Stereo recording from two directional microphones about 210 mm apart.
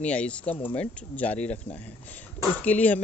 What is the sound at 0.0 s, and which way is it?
Speech, 5° left (ahead or behind).